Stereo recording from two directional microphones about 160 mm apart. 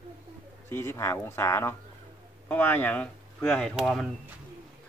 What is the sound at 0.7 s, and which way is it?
Speech, 15° left (ahead or behind).